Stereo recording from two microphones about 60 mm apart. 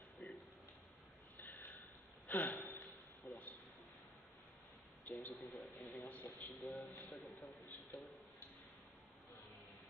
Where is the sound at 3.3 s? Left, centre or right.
Centre.